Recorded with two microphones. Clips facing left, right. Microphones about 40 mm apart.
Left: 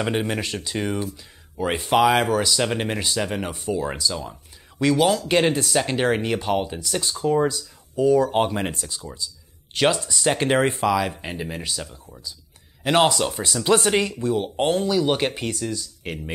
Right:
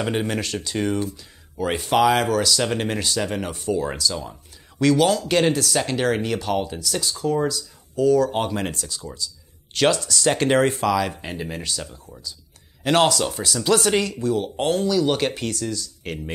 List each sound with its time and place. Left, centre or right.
0.0 s speech: centre
13.7 s speech: left; by 16.3 s centre